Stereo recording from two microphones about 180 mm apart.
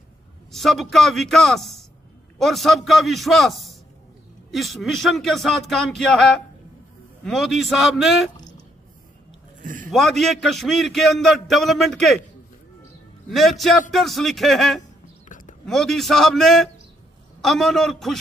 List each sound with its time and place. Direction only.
0.5 s a man's voice: centre (ahead or behind)
9.6 s a sound: 45° right (ahead or behind)
9.8 s a man's voice: centre (ahead or behind)
13.3 s a man's voice: centre (ahead or behind)
15.2 s a sound: 45° left (ahead or behind)
15.6 s a man's voice: centre (ahead or behind)